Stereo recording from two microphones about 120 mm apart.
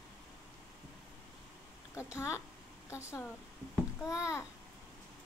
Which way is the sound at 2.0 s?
25° left (ahead or behind).